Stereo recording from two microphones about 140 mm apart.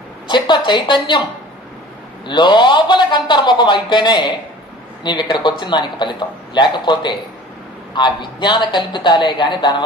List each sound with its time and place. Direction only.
0.3 s speech: 35° left (ahead or behind)
2.2 s speech: 35° left (ahead or behind)